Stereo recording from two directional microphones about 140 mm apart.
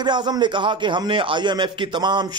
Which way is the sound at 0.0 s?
30° right (ahead or behind).